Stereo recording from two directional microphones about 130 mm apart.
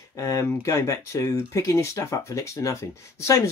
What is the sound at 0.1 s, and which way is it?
Speech, 25° left (ahead or behind).